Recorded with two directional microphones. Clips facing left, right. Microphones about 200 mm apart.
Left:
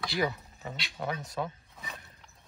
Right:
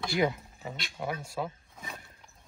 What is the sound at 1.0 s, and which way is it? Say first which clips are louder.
Speech: even; 5° right (ahead or behind).